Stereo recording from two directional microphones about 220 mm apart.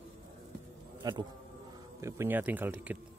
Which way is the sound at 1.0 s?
15° right (ahead or behind).